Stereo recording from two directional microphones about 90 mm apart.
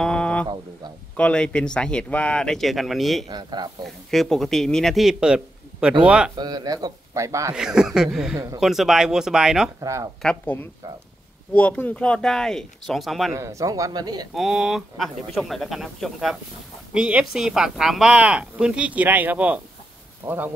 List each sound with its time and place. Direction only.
0.0 s a sound: 10° left (ahead or behind)
1.1 s speech: 10° left (ahead or behind)
3.3 s speech: 50° right (ahead or behind)
3.8 s a man's voice: 5° left (ahead or behind)
6.3 s speech: 50° right (ahead or behind)
7.5 s a man's voice: 5° right (ahead or behind)
9.8 s speech: 35° right (ahead or behind)
10.4 s a man's voice: 20° left (ahead or behind); by 13.3 s centre (ahead or behind)
13.3 s speech: 35° right (ahead or behind)
14.3 s a man's voice: 5° right (ahead or behind); by 20.5 s 20° right (ahead or behind)